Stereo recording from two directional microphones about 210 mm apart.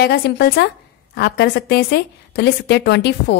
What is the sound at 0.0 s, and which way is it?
A woman's voice, 50° left (ahead or behind).